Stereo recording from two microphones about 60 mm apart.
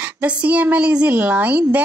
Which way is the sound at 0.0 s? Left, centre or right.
Right.